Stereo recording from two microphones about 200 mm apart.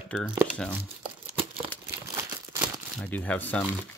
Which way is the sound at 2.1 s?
15° right (ahead or behind).